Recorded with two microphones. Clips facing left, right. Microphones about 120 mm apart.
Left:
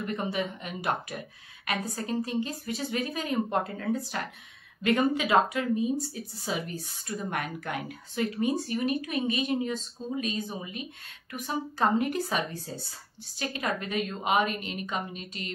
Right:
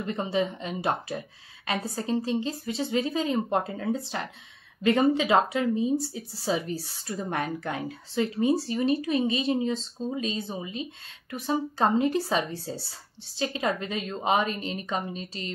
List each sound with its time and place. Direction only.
0.0 s speech: 25° right (ahead or behind)